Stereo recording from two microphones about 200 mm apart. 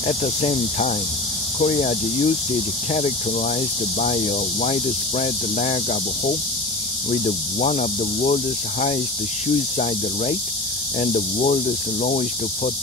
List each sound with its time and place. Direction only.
0.0 s speech: 35° left (ahead or behind)
11.0 s speech: 40° left (ahead or behind)